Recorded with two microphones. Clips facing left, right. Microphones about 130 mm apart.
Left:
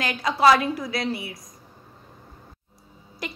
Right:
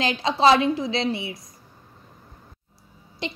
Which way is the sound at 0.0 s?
25° right (ahead or behind).